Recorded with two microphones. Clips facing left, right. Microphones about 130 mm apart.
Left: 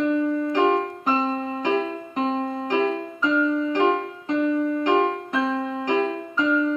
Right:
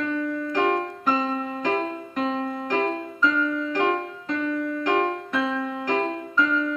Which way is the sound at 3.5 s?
25° left (ahead or behind).